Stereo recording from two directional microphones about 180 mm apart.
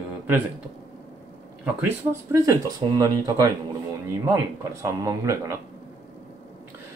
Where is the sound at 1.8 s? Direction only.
15° right (ahead or behind).